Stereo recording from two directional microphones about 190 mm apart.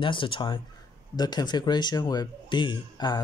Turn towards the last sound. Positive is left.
turn(degrees=20)  # may be behind; listen again after turning